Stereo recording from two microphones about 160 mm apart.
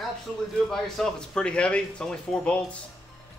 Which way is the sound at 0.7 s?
5° left (ahead or behind).